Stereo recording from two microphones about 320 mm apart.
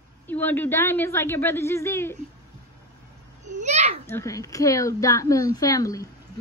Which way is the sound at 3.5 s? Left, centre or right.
Right.